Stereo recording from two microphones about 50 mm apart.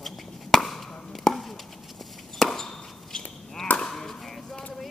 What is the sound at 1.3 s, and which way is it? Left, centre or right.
Chopping, centre.